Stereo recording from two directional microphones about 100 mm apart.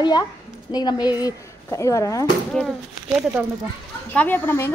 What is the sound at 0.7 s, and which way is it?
Speech, 45° left (ahead or behind).